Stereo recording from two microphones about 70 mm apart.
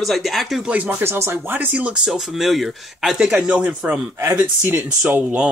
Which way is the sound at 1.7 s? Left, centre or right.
Centre.